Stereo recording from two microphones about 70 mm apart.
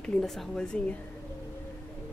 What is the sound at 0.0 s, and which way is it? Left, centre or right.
Speech, centre.